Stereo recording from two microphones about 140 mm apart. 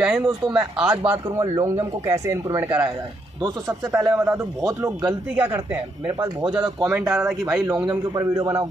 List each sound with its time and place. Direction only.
0.0 s speech: 10° right (ahead or behind)
1.4 s speech: 25° right (ahead or behind)
6.0 s speech: 35° right (ahead or behind)
7.1 s speech: 20° right (ahead or behind)